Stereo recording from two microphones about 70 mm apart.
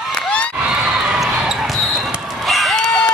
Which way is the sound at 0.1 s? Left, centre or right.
Centre.